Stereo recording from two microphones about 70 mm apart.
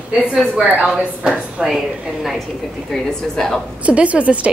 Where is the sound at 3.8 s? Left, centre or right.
Centre.